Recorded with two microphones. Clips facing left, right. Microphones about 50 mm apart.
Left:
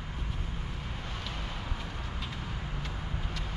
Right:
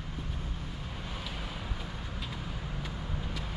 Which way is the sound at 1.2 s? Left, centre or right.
Centre.